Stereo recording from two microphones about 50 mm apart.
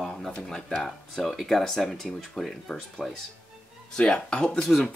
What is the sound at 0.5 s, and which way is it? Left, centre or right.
Speech, centre.